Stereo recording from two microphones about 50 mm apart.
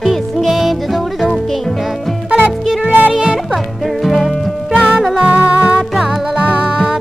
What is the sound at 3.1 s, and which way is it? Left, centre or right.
Music, centre.